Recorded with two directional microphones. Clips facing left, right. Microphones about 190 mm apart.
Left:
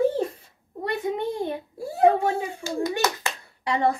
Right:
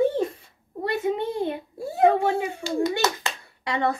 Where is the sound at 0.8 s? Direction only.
15° left (ahead or behind).